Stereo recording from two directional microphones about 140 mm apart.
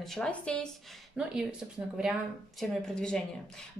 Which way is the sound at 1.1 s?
5° right (ahead or behind).